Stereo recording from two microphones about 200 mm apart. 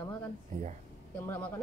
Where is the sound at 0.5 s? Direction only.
45° right (ahead or behind).